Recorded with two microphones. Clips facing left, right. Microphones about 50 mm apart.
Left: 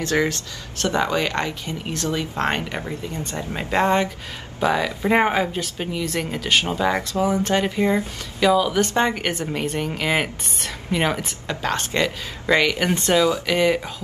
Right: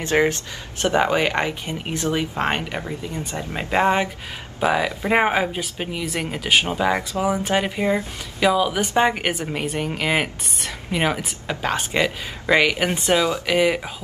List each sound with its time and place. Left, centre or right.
0.0 s speech: right; by 13.9 s centre